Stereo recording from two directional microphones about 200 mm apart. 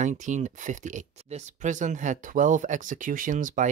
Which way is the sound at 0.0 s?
40° right (ahead or behind).